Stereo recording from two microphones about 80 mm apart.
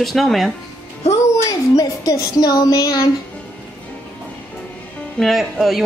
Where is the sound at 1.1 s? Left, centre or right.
Left.